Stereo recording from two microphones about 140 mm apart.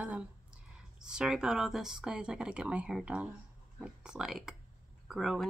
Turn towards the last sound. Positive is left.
turn(degrees=0)  # may be behind; listen again after turning